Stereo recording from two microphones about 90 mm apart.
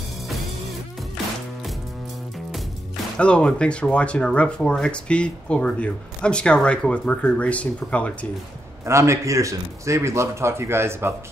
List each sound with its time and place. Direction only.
3.2 s speech: 10° left (ahead or behind)
8.8 s a man's voice: 35° right (ahead or behind)